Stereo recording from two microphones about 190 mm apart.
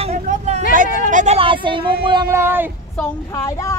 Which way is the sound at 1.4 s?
25° right (ahead or behind).